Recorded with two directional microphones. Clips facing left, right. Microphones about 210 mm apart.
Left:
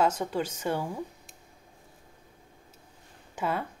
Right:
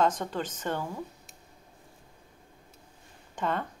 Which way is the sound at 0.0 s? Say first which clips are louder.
Left 1 dB; 10° left (ahead or behind).